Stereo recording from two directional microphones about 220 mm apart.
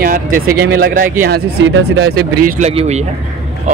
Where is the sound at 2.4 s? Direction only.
30° right (ahead or behind).